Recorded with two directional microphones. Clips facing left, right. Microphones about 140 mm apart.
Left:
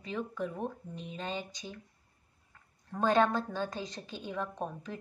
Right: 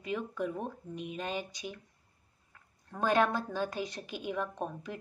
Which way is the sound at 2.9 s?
10° right (ahead or behind).